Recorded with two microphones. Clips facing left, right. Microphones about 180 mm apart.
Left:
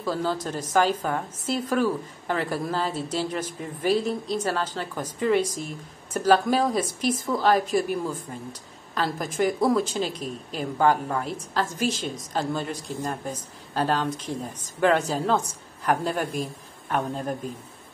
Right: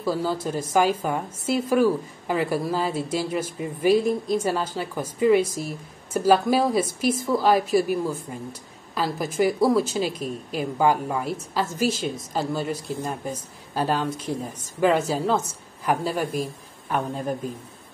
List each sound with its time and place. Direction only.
0.0 s a woman's voice: 10° right (ahead or behind)